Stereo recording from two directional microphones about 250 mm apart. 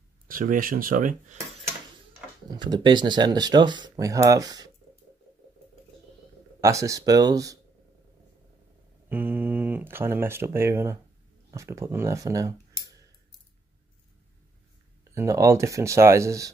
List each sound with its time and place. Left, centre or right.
0.3 s speech: right
2.5 s speech: centre
6.6 s speech: centre
9.1 s speech: centre
15.1 s speech: centre